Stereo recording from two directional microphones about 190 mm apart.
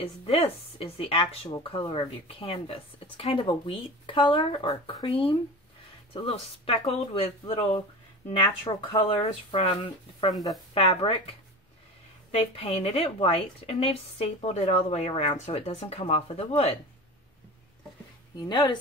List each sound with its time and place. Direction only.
0.0 s a woman's voice: 30° left (ahead or behind)
12.3 s a woman's voice: 35° left (ahead or behind)
18.5 s speech: 25° left (ahead or behind)